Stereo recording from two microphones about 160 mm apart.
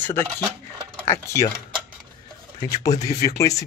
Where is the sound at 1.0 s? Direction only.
20° left (ahead or behind).